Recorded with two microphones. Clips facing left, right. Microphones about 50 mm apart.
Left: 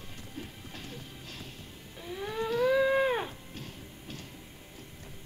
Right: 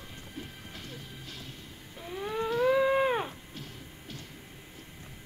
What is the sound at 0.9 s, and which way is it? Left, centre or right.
Music, right.